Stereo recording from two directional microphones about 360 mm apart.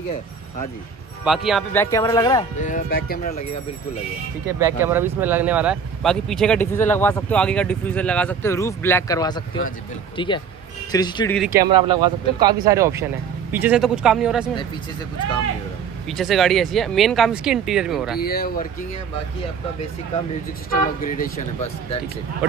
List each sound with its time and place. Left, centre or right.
1.2 s speech: centre
2.6 s speech: left
4.6 s speech: centre
11.3 s speech: centre
16.1 s speech: centre
18.2 s speech: left
20.7 s speech: left